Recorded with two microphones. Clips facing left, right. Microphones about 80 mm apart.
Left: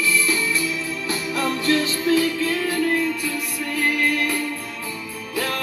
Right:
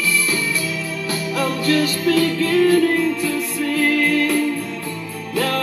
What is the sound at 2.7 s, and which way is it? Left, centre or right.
Music, right.